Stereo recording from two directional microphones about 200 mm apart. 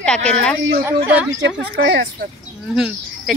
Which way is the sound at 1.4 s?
65° right (ahead or behind).